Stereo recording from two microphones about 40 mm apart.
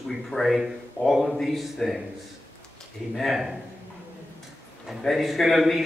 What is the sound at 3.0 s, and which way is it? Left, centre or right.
Speech, centre.